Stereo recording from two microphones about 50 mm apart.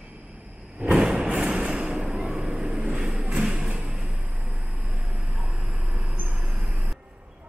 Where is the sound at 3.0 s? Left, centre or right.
Centre.